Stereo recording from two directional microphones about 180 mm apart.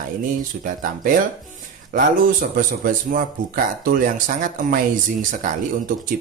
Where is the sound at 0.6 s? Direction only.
50° right (ahead or behind).